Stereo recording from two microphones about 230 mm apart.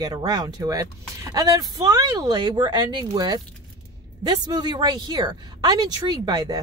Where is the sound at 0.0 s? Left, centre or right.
Centre.